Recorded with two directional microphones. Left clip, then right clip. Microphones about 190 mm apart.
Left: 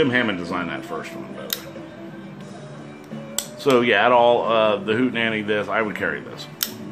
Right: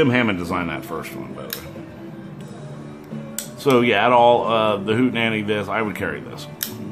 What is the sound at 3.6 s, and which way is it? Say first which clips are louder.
Speech: even; 15° right (ahead or behind).